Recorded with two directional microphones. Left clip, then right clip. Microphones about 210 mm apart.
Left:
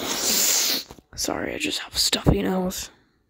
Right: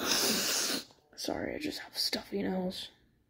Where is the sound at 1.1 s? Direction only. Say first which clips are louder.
Left 8 dB; 30° left (ahead or behind).